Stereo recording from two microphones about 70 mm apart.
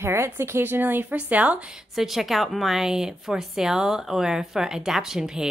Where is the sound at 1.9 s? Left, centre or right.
Centre.